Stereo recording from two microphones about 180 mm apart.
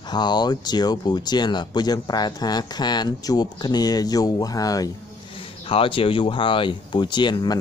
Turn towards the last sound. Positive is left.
turn(degrees=25)  # may be behind; listen again after turning